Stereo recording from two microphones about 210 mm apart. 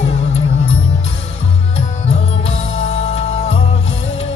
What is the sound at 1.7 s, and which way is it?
Music, 30° left (ahead or behind).